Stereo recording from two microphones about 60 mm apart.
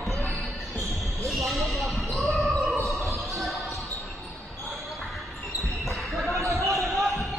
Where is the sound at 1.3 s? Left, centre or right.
Centre.